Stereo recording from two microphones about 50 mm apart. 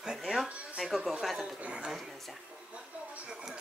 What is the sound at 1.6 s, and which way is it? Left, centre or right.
Speech, right.